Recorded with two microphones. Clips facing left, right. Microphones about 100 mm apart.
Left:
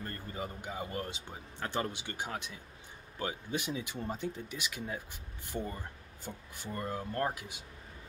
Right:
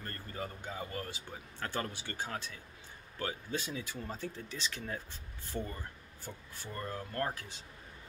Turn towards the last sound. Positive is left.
turn(degrees=15)  # may be behind; listen again after turning